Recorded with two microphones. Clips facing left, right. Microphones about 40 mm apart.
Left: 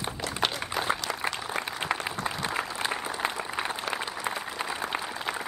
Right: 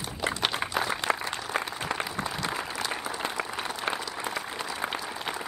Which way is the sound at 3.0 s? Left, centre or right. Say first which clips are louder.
Left 2 dB; left.